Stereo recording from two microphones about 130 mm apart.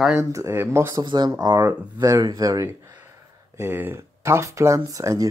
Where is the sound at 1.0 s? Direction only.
35° right (ahead or behind).